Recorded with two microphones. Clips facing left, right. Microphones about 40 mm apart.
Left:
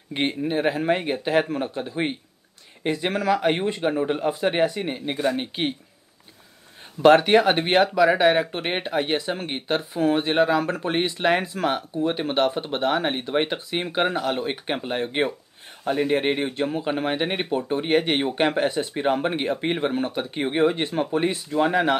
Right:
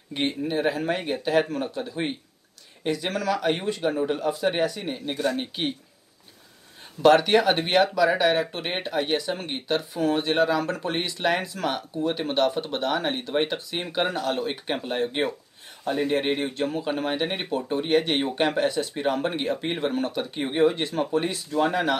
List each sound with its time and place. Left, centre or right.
0.1 s speech: centre
7.0 s speech: left